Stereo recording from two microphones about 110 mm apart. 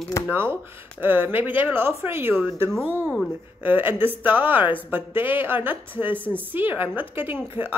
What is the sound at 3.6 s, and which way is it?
A woman's voice, 15° right (ahead or behind).